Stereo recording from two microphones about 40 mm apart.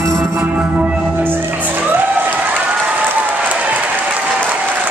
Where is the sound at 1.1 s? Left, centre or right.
Right.